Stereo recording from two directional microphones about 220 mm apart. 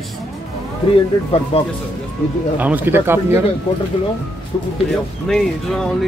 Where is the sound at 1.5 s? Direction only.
25° left (ahead or behind).